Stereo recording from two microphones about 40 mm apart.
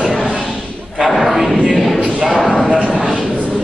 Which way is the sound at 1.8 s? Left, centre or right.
Centre.